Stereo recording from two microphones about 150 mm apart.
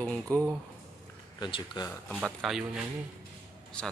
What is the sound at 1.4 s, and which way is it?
Speech, 30° left (ahead or behind).